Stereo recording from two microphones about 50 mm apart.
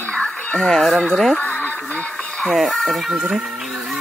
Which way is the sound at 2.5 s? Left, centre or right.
Centre.